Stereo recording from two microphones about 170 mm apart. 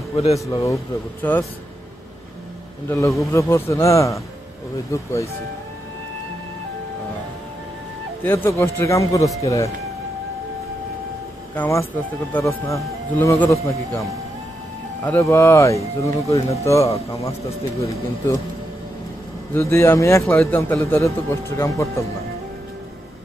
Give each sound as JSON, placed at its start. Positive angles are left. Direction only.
{"t": 0.1, "sound": "speech", "side_deg": 35}
{"t": 0.5, "sound": "a man's voice", "side_deg": 20}
{"t": 2.9, "sound": "a man's voice", "side_deg": 20}
{"t": 8.2, "sound": "a man's voice", "side_deg": 15}
{"t": 11.5, "sound": "a man's voice", "side_deg": 10}
{"t": 15.0, "sound": "a man's voice", "side_deg": 15}
{"t": 19.5, "sound": "a man's voice", "side_deg": 15}